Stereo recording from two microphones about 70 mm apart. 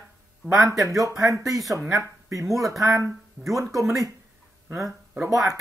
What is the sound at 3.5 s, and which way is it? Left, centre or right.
Speech, right.